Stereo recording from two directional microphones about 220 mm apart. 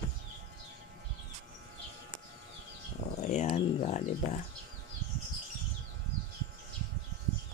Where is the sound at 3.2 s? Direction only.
30° left (ahead or behind).